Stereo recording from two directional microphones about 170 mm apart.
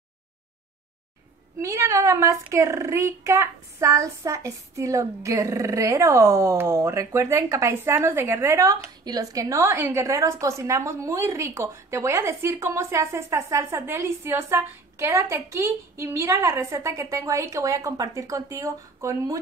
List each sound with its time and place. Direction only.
1.6 s a woman's voice: 20° right (ahead or behind)